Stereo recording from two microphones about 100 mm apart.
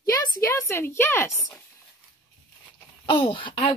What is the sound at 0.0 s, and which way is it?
Speech, 30° left (ahead or behind).